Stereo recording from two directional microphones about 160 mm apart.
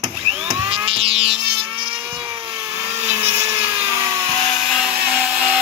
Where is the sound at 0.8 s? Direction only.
35° right (ahead or behind).